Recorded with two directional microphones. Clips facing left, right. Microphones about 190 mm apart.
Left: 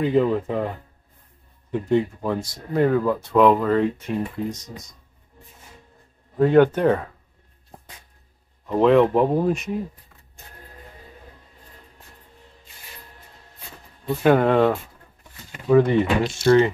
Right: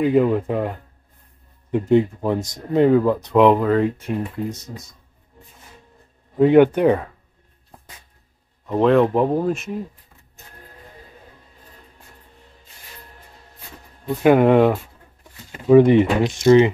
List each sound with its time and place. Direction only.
0.0 s speech: 10° right (ahead or behind)
3.6 s speech: 5° right (ahead or behind)
6.3 s speech: 15° right (ahead or behind)
8.6 s speech: centre (ahead or behind)
14.2 s speech: 10° right (ahead or behind)